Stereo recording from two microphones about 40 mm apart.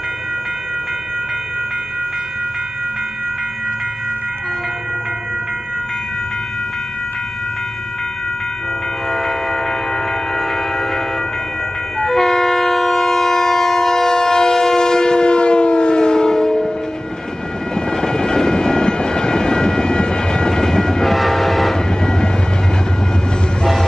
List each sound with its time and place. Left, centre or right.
9.1 s train: centre
12.0 s train: centre
17.7 s vehicle: centre
21.1 s train: centre
21.7 s train: centre